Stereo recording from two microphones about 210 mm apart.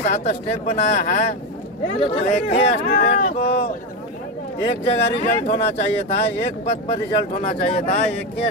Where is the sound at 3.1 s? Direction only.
45° left (ahead or behind).